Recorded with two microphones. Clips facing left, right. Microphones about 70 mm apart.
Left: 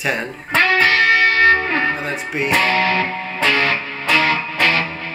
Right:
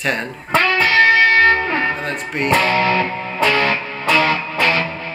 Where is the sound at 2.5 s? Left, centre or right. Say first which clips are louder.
Right 1 dB; right.